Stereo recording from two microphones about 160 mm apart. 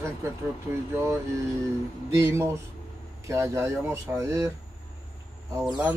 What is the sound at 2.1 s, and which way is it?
Speech, 20° right (ahead or behind).